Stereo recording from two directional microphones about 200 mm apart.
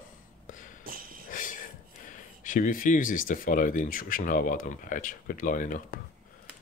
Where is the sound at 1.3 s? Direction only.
40° left (ahead or behind).